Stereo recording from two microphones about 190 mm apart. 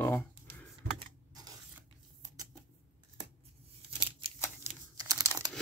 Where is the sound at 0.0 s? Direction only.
10° left (ahead or behind).